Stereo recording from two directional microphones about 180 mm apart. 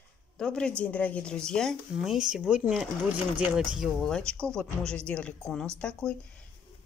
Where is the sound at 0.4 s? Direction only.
5° left (ahead or behind).